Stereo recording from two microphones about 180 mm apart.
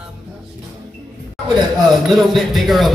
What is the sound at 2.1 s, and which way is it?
Music, centre (ahead or behind).